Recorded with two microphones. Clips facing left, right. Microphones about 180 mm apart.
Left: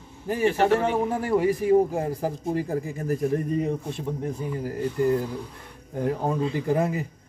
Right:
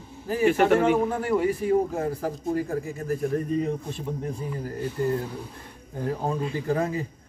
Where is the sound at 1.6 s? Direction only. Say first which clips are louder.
Left 3 dB; 15° left (ahead or behind).